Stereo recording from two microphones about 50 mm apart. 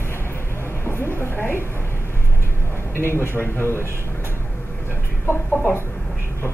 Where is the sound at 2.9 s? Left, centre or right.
Left.